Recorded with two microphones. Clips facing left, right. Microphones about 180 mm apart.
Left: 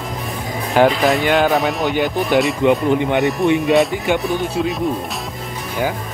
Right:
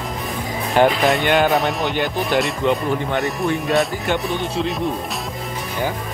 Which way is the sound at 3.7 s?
Centre (ahead or behind).